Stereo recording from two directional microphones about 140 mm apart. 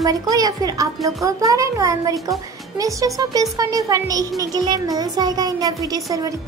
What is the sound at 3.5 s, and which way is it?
A woman's voice, 25° right (ahead or behind).